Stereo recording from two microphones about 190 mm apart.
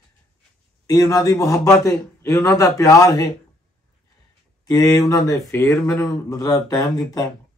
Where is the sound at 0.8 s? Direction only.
20° left (ahead or behind).